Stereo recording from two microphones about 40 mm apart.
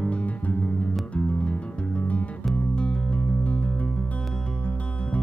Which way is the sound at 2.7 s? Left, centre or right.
Left.